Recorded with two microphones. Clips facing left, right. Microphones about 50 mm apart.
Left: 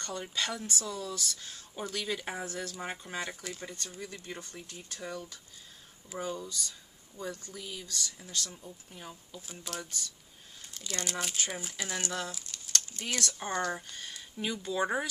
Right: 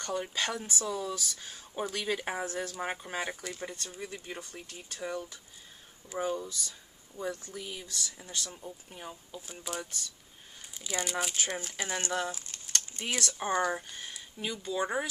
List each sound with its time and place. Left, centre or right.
0.0 s speech: centre
5.1 s speech: right
7.6 s speech: right
9.0 s speech: centre
11.7 s speech: right
12.7 s a sound: right
13.1 s speech: centre